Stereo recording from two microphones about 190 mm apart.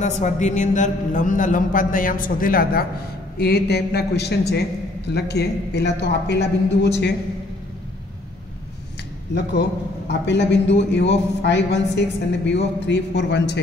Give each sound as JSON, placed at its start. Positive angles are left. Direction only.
{"t": 0.0, "sound": "a man's voice", "side_deg": 40}
{"t": 9.3, "sound": "a man's voice", "side_deg": 65}